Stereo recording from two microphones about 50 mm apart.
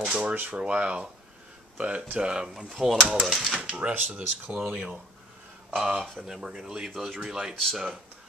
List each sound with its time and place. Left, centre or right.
0.0 s a sound: right
0.5 s speech: right; by 3.5 s centre
3.6 s speech: right
5.8 s speech: centre
6.9 s speech: centre
7.2 s speech: centre